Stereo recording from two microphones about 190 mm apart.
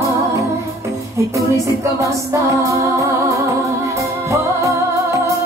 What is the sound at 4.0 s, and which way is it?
Music, 15° right (ahead or behind).